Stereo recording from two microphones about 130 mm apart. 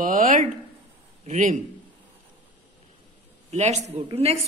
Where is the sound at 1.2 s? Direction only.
70° right (ahead or behind).